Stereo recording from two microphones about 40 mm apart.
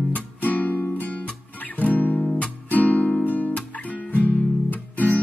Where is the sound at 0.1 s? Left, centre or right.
Left.